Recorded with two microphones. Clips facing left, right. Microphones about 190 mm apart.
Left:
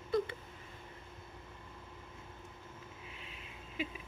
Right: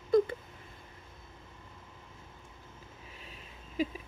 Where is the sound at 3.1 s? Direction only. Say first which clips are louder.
Even; 40° right (ahead or behind).